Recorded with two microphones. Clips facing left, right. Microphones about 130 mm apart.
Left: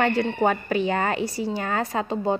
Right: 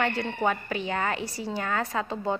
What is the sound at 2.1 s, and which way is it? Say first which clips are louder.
Speech: left 5 dB; 20° left (ahead or behind).